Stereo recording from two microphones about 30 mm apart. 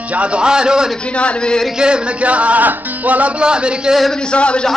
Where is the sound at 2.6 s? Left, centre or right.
Right.